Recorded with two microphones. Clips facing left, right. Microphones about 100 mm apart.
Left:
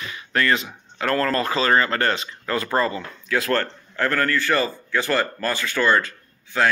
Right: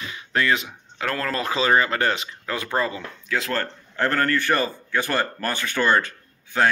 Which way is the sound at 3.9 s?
25° right (ahead or behind).